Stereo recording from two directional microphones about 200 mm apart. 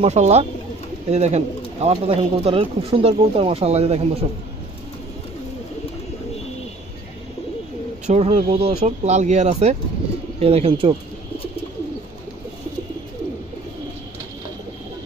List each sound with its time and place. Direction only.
0.0 s speech: 35° right (ahead or behind)
8.1 s speech: 30° right (ahead or behind)